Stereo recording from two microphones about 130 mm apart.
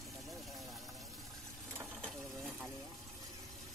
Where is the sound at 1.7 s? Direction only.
15° right (ahead or behind).